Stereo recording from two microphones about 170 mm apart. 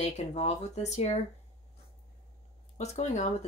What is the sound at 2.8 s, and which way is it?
Speech, 45° left (ahead or behind).